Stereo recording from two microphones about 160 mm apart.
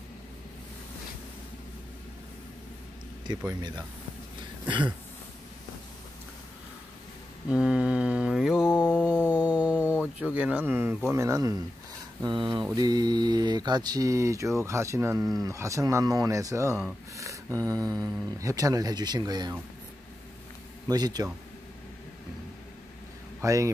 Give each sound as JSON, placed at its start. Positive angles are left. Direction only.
{"t": 3.3, "sound": "speech", "side_deg": -30}
{"t": 4.6, "sound": "speech", "side_deg": -30}
{"t": 7.4, "sound": "mantra", "side_deg": -5}
{"t": 9.0, "sound": "a sound", "side_deg": -10}
{"t": 10.3, "sound": "speech", "side_deg": -10}
{"t": 17.2, "sound": "a sound", "side_deg": -20}
{"t": 18.4, "sound": "speech", "side_deg": -20}
{"t": 20.9, "sound": "speech", "side_deg": -25}
{"t": 23.4, "sound": "speech", "side_deg": -20}